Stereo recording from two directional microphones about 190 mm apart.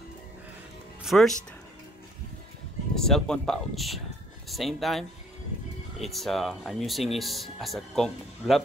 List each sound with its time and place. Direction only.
1.0 s speech: centre (ahead or behind)
3.0 s speech: 5° left (ahead or behind)